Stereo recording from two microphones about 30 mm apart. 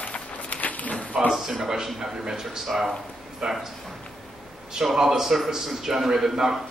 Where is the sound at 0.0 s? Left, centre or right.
Left.